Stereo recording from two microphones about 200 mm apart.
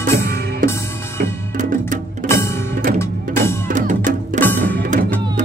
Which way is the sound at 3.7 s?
40° right (ahead or behind).